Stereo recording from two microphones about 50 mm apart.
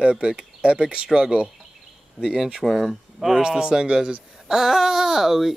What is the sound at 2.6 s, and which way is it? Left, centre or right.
Speech, centre.